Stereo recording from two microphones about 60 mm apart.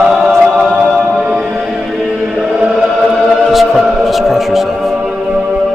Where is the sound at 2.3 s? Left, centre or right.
Centre.